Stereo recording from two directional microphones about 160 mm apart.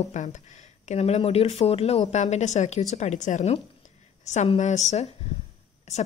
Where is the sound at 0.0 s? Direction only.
50° left (ahead or behind).